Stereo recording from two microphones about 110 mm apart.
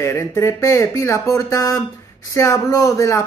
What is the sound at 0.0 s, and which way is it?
Speech, 25° left (ahead or behind).